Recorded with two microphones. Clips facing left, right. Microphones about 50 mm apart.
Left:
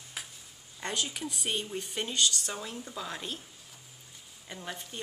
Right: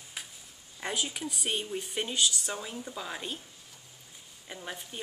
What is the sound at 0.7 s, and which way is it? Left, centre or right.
Speech, centre.